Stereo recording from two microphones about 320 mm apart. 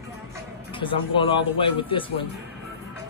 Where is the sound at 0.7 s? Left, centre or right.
Centre.